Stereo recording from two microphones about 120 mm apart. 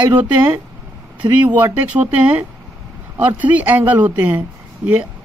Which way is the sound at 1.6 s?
15° right (ahead or behind).